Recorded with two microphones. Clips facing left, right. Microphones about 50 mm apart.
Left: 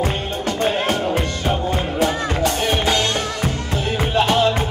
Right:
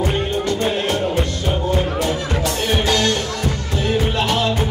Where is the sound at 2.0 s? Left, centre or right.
Left.